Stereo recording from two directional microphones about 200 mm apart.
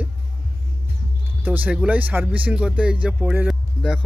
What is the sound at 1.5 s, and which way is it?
Speech, 10° right (ahead or behind).